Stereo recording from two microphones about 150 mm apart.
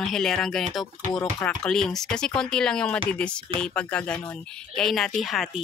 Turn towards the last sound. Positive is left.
turn(degrees=0)  # may be behind; listen again after turning